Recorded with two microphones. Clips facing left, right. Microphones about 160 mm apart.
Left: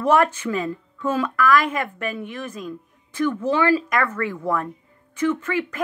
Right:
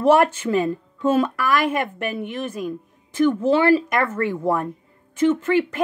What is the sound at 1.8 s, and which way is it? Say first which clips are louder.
Speech: right 2 dB; 10° right (ahead or behind).